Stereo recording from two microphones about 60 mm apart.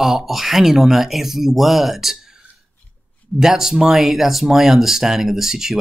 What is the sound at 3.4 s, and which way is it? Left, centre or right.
Speech, centre.